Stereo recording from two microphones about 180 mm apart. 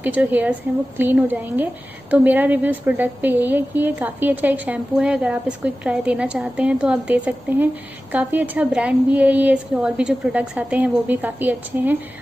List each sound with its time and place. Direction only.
0.0 s a woman's voice: 10° right (ahead or behind)